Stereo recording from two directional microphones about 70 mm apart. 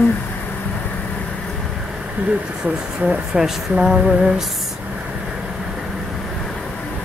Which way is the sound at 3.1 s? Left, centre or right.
Centre.